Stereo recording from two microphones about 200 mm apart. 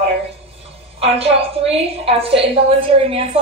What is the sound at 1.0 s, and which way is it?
A woman's voice, 30° right (ahead or behind).